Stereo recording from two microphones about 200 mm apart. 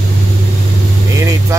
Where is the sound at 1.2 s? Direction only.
15° right (ahead or behind).